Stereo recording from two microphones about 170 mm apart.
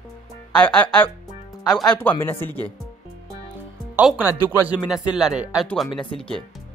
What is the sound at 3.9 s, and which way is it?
Speech, 5° right (ahead or behind).